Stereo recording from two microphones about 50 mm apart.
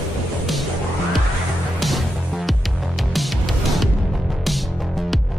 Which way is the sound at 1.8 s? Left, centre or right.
Centre.